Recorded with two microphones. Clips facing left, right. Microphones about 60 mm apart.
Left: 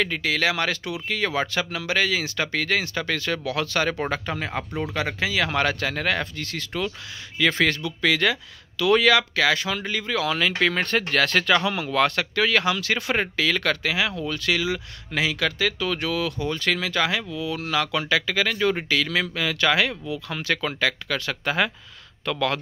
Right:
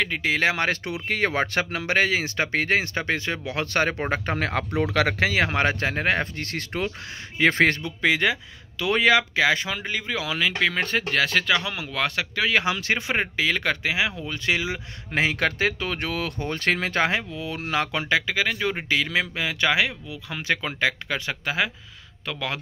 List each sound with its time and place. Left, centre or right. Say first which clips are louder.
0.0 s speech: right 1 dB; centre
3.6 s speech: right 3 dB; right
4.4 s speech: right 4 dB; right
5.5 s speech: even; right
8.0 s speech: even; right; by 12.4 s centre
12.4 s speech: right 1 dB; centre
18.2 s speech: left 2 dB; centre
21.5 s speech: left 3 dB; centre